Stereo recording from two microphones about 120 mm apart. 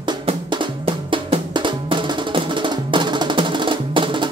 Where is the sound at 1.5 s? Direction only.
40° right (ahead or behind).